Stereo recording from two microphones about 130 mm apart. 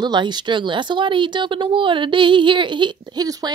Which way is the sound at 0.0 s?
35° right (ahead or behind).